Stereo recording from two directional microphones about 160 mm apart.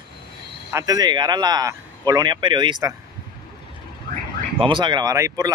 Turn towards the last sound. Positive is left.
turn(degrees=-20)  # may be behind; listen again after turning